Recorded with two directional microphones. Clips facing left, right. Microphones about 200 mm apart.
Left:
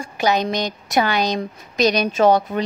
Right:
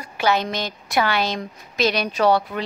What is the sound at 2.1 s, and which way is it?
Speech, 45° left (ahead or behind).